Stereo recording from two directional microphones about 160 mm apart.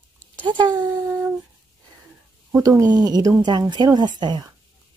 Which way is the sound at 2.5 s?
20° right (ahead or behind).